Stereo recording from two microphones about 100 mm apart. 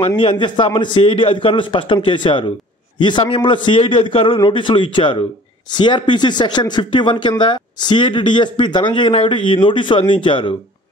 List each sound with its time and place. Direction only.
0.1 s a man's voice: 60° left (ahead or behind)